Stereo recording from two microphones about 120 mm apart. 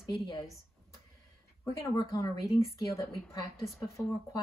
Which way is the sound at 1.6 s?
25° left (ahead or behind).